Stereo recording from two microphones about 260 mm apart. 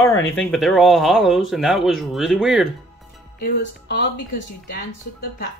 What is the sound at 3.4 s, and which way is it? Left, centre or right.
Speech, left.